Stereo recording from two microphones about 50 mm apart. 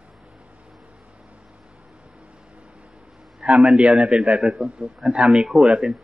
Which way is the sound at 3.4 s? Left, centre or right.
Right.